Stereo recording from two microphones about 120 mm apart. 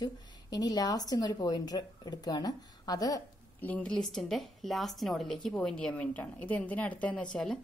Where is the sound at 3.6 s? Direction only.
10° left (ahead or behind).